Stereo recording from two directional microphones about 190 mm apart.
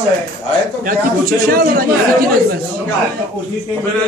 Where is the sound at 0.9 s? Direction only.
45° right (ahead or behind).